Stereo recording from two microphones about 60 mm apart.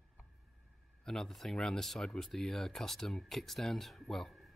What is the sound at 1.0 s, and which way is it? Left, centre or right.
Speech, centre.